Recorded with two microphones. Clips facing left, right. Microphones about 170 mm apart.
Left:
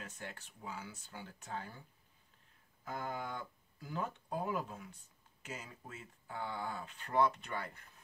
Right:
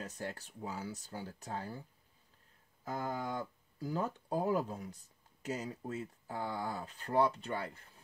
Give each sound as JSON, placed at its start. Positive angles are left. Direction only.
{"t": 0.0, "sound": "speech", "side_deg": -35}